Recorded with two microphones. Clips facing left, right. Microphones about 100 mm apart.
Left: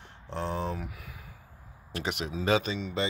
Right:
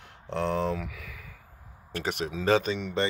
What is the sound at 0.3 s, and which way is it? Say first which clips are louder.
Speech: right 5 dB; 90° right.